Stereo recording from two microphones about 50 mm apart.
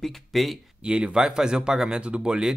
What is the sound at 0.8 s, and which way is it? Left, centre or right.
Speech, centre.